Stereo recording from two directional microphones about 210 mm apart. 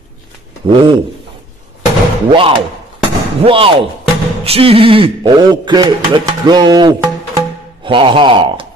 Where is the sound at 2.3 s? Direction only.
25° right (ahead or behind).